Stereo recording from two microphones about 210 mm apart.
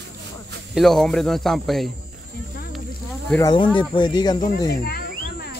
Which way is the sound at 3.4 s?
20° left (ahead or behind).